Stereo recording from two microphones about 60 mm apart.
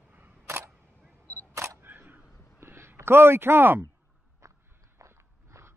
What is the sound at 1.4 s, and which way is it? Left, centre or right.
Single-lens reflex camera, right.